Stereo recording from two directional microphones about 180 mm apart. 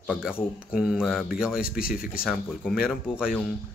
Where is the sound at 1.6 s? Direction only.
55° left (ahead or behind).